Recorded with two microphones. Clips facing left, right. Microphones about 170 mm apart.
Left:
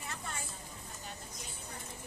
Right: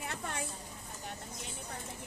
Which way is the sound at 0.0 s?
65° right (ahead or behind).